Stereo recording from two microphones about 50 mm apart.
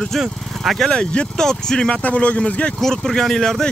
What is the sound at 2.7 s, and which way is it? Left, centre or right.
Speech, centre.